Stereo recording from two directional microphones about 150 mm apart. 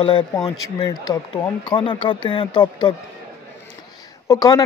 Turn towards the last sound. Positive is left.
turn(degrees=25)  # may be behind; listen again after turning